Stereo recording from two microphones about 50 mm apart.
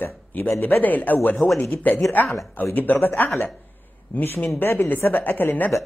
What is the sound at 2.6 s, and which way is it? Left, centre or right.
A man's voice, left.